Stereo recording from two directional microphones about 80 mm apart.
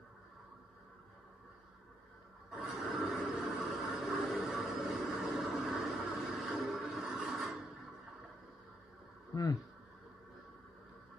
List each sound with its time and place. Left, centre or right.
2.5 s a sound: centre
6.9 s television: centre
9.3 s speech: left